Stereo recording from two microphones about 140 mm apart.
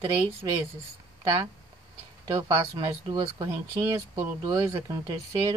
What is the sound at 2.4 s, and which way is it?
Speech, 30° right (ahead or behind).